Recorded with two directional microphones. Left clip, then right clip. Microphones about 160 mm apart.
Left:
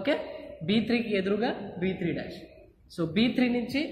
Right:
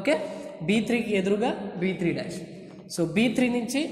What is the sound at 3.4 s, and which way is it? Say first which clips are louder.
Speech: right 2 dB; 35° left (ahead or behind).